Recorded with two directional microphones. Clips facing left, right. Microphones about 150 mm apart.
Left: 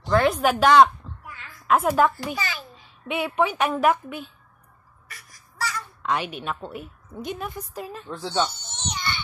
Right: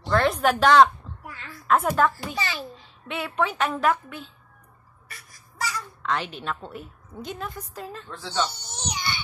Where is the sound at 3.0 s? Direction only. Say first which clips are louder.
Left 3 dB; 15° left (ahead or behind).